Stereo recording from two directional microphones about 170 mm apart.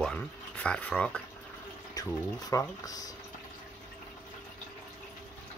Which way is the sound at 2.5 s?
20° left (ahead or behind).